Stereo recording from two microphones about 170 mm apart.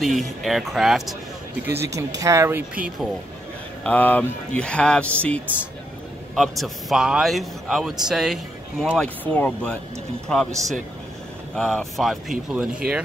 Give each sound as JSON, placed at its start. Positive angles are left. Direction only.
{"t": 0.0, "sound": "a man's voice", "side_deg": 0}
{"t": 2.0, "sound": "speech", "side_deg": -20}
{"t": 3.8, "sound": "a man's voice", "side_deg": 10}
{"t": 11.5, "sound": "a man's voice", "side_deg": 5}